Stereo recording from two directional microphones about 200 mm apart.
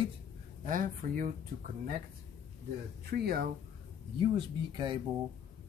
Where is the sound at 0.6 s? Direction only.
40° right (ahead or behind).